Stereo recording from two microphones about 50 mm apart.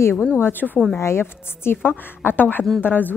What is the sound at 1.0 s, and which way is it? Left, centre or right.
A woman's voice, left.